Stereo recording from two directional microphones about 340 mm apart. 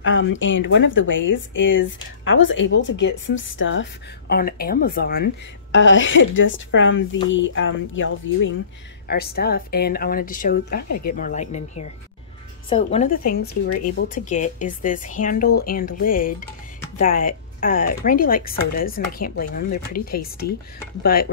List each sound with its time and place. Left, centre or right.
0.0 s speech: left